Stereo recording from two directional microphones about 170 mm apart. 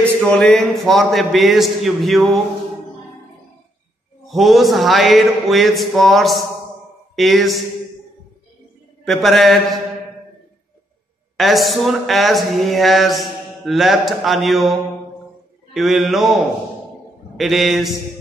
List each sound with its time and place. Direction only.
0.0 s a man's voice: 5° left (ahead or behind)
4.3 s a man's voice: centre (ahead or behind)
9.0 s a man's voice: centre (ahead or behind)
11.3 s a man's voice: centre (ahead or behind)
17.4 s a man's voice: centre (ahead or behind)